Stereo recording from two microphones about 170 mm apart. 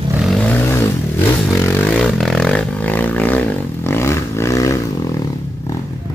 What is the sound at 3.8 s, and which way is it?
Roar, 15° left (ahead or behind).